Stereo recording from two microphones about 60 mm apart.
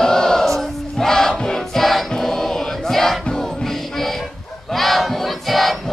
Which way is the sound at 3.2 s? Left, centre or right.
Centre.